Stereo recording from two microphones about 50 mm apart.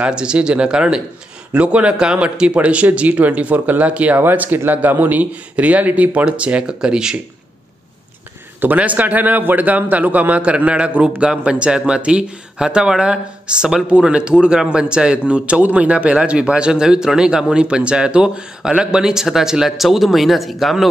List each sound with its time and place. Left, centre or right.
0.0 s a man's voice: centre
4.2 s a man's voice: right; by 7.2 s centre
8.5 s a man's voice: right; by 20.9 s centre